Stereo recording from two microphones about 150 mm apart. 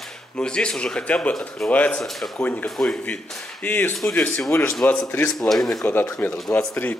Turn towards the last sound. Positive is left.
turn(degrees=15)  # may be behind; listen again after turning